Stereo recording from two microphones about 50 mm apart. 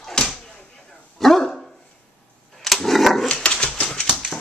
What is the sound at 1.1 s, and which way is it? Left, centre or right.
Dog, centre.